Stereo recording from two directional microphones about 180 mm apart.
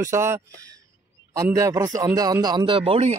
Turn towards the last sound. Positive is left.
turn(degrees=-35)  # may be behind; listen again after turning